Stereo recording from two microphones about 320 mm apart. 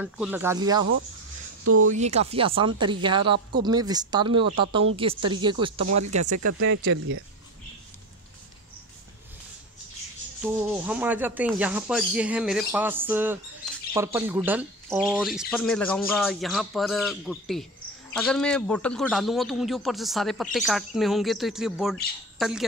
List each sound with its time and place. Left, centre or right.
0.0 s speech: centre
1.6 s speech: right
1.9 s speech: right
5.9 s speech: right
10.4 s speech: centre